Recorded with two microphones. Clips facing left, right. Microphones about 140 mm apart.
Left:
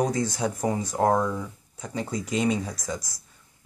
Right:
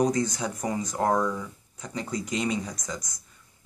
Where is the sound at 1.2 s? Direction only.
10° left (ahead or behind).